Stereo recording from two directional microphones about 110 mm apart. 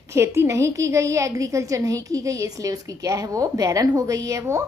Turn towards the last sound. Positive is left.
turn(degrees=-30)  # may be behind; listen again after turning